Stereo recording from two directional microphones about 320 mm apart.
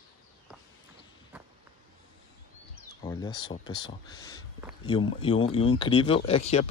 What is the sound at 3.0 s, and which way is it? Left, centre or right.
Speech, centre.